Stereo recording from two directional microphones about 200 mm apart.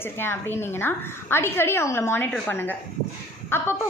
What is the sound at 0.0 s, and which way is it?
A woman's voice, 10° left (ahead or behind).